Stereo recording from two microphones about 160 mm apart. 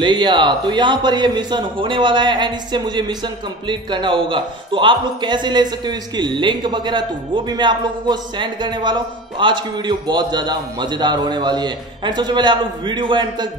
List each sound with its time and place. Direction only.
0.0 s a man's voice: 30° right (ahead or behind)